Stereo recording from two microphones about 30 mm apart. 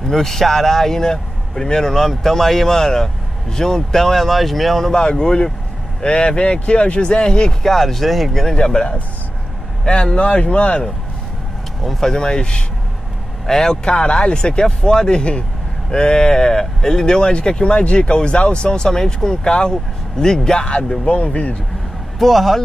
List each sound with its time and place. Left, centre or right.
0.1 s speech: centre
4.9 s speech: left
7.6 s speech: centre
8.5 s speech: left
11.8 s speech: centre
12.1 s speech: left
13.8 s speech: left
15.0 s speech: left
19.7 s speech: centre
21.0 s speech: left
22.2 s speech: centre